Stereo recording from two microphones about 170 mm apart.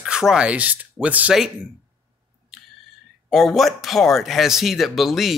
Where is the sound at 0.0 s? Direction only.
5° right (ahead or behind).